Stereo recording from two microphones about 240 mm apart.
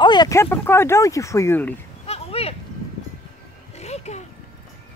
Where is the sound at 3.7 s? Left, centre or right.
Left.